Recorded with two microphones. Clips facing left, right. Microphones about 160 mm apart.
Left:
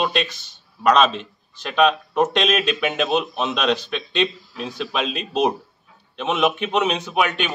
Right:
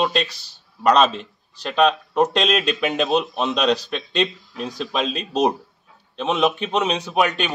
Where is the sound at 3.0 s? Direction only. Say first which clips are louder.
Right 1 dB; centre (ahead or behind).